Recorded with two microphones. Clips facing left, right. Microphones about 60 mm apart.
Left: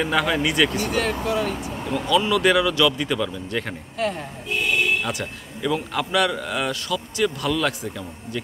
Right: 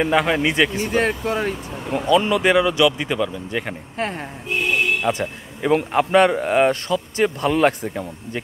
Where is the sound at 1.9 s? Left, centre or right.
Right.